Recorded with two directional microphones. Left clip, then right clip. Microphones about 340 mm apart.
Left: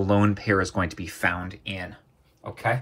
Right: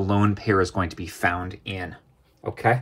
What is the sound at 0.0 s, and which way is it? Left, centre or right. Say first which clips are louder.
Speech: left 1 dB; centre.